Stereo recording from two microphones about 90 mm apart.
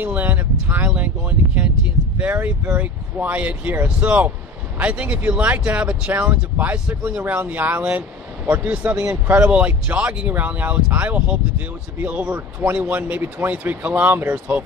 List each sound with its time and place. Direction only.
0.0 s speech: 20° right (ahead or behind)